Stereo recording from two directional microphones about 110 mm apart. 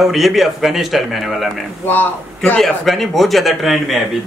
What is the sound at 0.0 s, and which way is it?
Speech, centre (ahead or behind).